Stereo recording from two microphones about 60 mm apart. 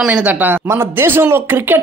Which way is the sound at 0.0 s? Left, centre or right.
Right.